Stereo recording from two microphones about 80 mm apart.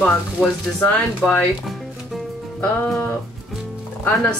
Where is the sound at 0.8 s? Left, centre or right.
Centre.